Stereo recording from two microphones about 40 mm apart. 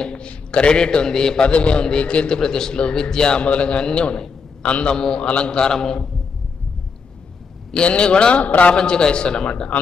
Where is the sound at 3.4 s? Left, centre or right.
Left; by 6.0 s centre.